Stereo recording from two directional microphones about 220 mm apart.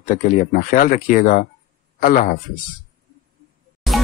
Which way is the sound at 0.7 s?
40° left (ahead or behind).